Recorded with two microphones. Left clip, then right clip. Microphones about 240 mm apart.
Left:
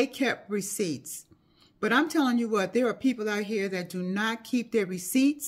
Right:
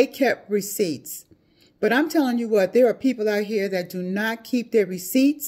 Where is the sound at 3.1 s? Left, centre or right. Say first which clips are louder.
Right 8 dB; left.